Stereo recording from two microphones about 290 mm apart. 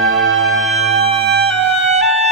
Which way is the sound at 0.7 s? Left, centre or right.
Right.